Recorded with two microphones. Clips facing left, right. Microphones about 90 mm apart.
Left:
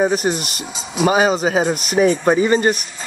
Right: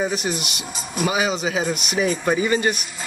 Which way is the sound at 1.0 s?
40° left (ahead or behind).